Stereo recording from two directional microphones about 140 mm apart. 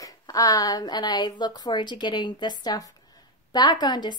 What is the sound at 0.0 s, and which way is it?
A woman's voice, 25° left (ahead or behind).